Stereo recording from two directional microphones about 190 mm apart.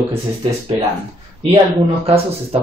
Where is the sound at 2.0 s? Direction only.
30° right (ahead or behind).